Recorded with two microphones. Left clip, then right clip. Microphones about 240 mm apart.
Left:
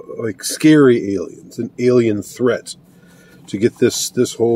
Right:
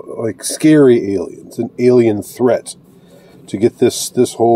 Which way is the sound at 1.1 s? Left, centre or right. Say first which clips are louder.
Right 3 dB; centre.